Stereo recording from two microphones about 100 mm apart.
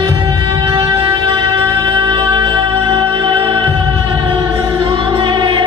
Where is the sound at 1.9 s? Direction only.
55° right (ahead or behind).